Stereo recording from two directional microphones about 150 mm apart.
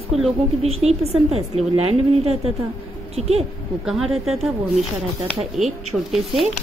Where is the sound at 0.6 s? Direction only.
45° right (ahead or behind).